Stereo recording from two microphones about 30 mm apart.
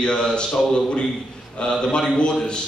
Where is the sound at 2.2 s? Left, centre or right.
Left.